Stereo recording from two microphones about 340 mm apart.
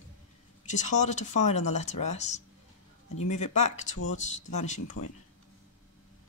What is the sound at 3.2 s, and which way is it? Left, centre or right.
Speech, left.